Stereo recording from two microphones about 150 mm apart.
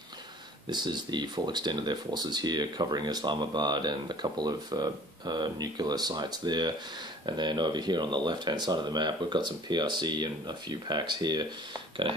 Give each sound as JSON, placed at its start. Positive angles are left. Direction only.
{"t": 0.7, "sound": "speech", "side_deg": -30}